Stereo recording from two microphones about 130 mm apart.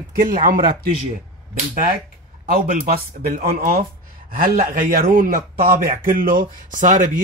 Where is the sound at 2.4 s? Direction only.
90° right.